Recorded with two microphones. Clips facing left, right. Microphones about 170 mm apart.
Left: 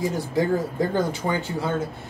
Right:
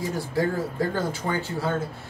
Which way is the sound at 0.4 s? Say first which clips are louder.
Left 3 dB; 20° left (ahead or behind).